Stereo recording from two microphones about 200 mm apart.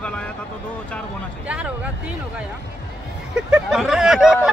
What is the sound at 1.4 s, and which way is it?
Speech, 5° right (ahead or behind).